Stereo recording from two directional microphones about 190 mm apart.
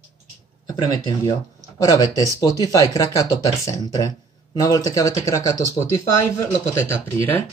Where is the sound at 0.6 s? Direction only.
20° left (ahead or behind).